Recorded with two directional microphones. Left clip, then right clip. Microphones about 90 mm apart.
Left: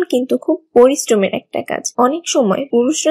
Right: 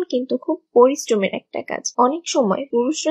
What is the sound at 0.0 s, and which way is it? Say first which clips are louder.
Speech: left 6 dB; 40° left (ahead or behind).